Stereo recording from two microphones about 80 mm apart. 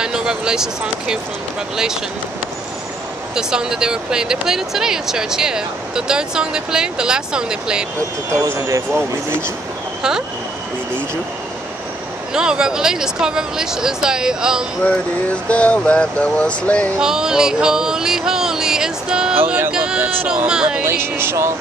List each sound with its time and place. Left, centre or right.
0.0 s speech: centre
3.3 s speech: centre
8.3 s speech: right
12.4 s speech: centre
15.4 s speech: centre
17.0 s speech: centre
19.3 s speech: right
19.7 s speech: centre
20.2 s speech: centre
20.8 s speech: right